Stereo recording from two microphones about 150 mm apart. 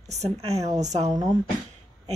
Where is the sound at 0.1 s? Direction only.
45° right (ahead or behind).